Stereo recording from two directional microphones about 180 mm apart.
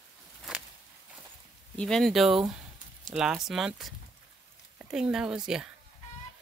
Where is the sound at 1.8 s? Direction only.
Centre (ahead or behind).